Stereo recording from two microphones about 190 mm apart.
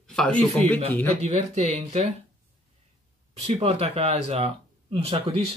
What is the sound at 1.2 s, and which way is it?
Speech, 35° right (ahead or behind).